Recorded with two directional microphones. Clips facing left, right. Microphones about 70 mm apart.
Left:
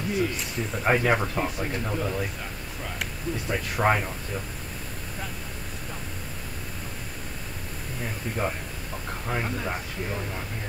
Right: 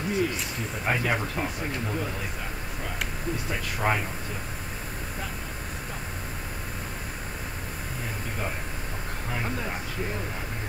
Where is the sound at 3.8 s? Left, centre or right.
Left.